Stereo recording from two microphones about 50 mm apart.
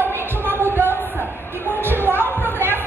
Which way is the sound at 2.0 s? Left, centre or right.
Right.